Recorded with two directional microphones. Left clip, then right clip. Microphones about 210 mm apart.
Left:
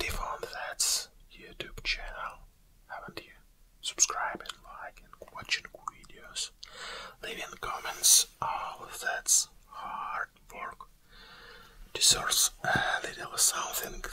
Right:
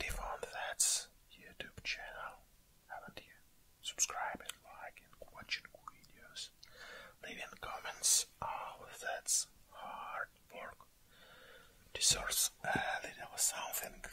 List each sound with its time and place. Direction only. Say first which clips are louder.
0.0 s whispering: left 7 dB; 35° right (ahead or behind)
12.6 s speech: left 7 dB; 15° right (ahead or behind)